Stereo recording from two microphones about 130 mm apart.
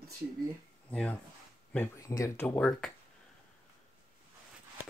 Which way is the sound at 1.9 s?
25° left (ahead or behind).